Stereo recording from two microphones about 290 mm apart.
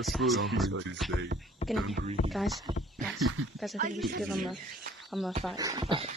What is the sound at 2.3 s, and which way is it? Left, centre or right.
Speech, centre.